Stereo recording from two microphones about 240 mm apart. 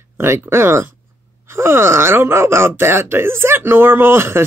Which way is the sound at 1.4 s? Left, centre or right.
Centre.